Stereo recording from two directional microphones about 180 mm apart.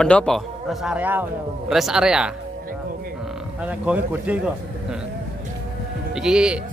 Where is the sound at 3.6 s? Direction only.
5° right (ahead or behind).